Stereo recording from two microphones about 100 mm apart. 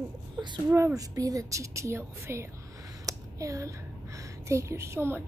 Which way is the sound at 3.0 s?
30° right (ahead or behind).